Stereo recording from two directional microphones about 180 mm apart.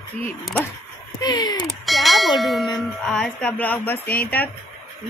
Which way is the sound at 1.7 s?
Centre (ahead or behind).